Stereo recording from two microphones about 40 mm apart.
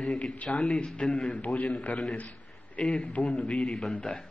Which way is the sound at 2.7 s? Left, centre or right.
Left.